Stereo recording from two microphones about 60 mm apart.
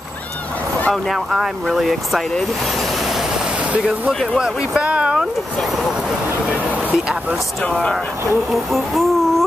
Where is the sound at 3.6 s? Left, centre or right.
Right.